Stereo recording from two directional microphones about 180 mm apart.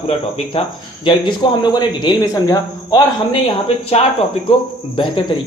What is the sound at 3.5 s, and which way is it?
Speech, 30° left (ahead or behind).